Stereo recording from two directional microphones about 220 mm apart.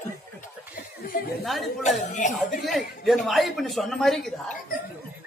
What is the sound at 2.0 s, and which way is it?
Speech, 35° left (ahead or behind).